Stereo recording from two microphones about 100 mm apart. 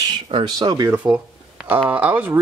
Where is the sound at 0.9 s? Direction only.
15° right (ahead or behind).